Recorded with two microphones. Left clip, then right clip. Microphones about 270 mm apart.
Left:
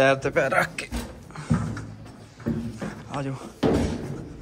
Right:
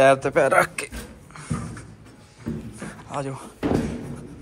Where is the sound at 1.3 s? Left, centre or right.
Centre.